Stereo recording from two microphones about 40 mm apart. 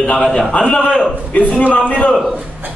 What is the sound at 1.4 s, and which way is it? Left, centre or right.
Speech, left.